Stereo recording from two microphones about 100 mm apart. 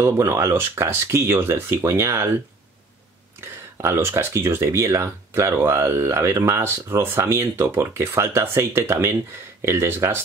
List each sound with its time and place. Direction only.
0.0 s speech: 25° right (ahead or behind)
3.8 s speech: 25° right (ahead or behind)